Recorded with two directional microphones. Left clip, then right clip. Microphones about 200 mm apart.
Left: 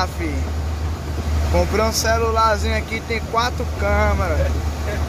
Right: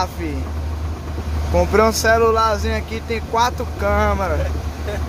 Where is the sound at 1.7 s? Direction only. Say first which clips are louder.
Right 7 dB; 35° right (ahead or behind).